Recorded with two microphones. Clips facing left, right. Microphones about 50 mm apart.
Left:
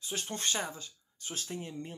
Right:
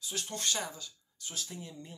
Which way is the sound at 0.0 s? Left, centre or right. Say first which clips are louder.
Left 1 dB; left.